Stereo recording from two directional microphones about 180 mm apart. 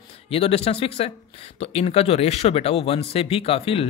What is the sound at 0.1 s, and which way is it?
Speech, 35° left (ahead or behind).